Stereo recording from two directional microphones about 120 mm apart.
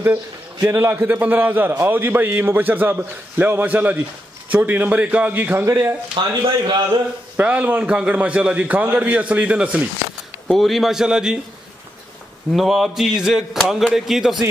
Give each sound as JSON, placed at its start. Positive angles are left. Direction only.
{"t": 0.0, "sound": "a man's voice", "side_deg": -20}
{"t": 6.1, "sound": "a man's voice", "side_deg": -45}
{"t": 7.3, "sound": "a man's voice", "side_deg": -15}
{"t": 10.5, "sound": "speech", "side_deg": 0}
{"t": 12.5, "sound": "speech", "side_deg": 0}